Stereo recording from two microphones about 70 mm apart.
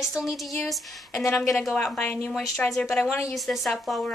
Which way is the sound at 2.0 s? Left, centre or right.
Left.